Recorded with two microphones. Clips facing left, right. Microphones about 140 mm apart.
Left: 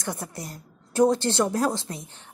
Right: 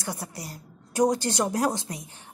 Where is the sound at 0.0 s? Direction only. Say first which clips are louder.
Left 2 dB; 5° right (ahead or behind).